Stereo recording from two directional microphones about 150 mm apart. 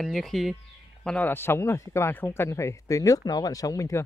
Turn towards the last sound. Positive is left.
turn(degrees=20)  # may be behind; listen again after turning